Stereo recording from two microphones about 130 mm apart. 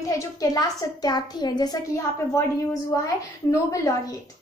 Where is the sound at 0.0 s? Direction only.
25° left (ahead or behind).